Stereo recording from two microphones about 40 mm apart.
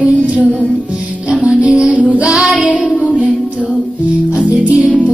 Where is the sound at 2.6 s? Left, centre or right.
Right.